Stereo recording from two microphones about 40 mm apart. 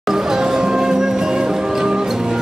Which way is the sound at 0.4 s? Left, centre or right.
Centre.